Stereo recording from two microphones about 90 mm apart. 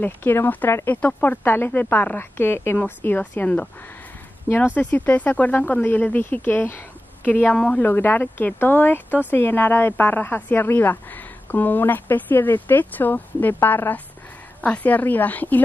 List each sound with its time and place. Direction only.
0.0 s a woman's voice: 25° left (ahead or behind)